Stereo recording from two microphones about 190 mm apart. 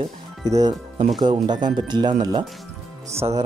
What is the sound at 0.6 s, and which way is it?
Speech, 25° right (ahead or behind).